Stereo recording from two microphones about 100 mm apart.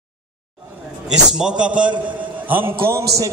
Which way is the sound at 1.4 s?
10° right (ahead or behind).